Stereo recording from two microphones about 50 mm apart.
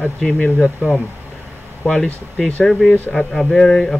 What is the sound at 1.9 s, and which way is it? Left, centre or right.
Speech, centre.